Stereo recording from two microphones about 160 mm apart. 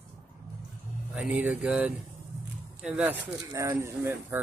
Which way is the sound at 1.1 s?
10° right (ahead or behind).